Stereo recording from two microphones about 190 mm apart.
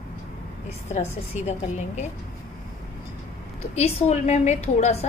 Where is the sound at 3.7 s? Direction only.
35° left (ahead or behind).